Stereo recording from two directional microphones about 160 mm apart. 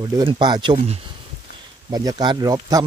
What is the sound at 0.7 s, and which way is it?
Speech, 40° right (ahead or behind).